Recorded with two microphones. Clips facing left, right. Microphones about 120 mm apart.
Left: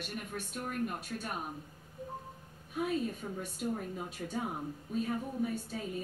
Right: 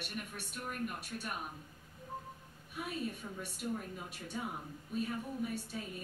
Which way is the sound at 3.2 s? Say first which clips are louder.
Left 5 dB; 35° left (ahead or behind).